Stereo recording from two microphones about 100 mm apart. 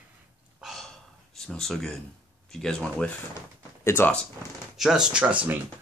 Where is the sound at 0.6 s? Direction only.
Centre (ahead or behind).